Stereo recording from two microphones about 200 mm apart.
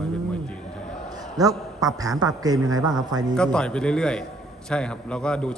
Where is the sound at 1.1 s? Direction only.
20° right (ahead or behind).